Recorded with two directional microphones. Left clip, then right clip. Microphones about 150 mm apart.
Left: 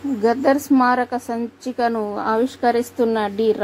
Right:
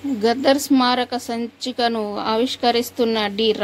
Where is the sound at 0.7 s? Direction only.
35° right (ahead or behind).